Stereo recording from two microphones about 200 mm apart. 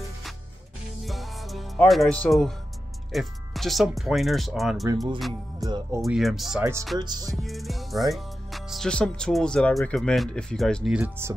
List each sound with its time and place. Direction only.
1.0 s music: centre (ahead or behind)
3.1 s speech: centre (ahead or behind)
5.6 s speech: 15° right (ahead or behind)
6.0 s speech: centre (ahead or behind)
7.0 s music: 20° right (ahead or behind)
7.4 s speech: centre (ahead or behind)